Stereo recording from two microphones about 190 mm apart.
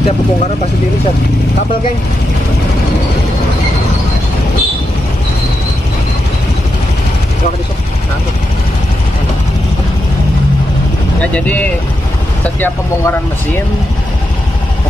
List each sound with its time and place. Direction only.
12.5 s speech: 10° left (ahead or behind)